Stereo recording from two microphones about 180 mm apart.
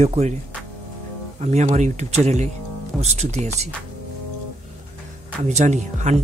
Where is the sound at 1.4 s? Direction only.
40° right (ahead or behind).